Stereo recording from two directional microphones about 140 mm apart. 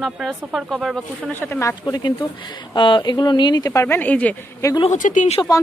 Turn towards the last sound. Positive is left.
turn(degrees=65)  # may be behind; listen again after turning